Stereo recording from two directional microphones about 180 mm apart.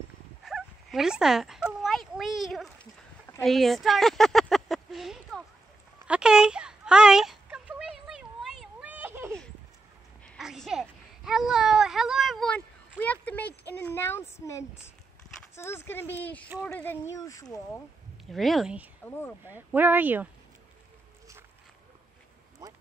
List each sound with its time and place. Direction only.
0.5 s a sound: centre (ahead or behind)
3.4 s speech: centre (ahead or behind)
6.0 s a sound: 5° right (ahead or behind); by 14.9 s 15° left (ahead or behind)
15.5 s speech: 15° left (ahead or behind)
18.3 s speech: centre (ahead or behind)
19.0 s speech: 10° left (ahead or behind)
19.4 s speech: 10° right (ahead or behind)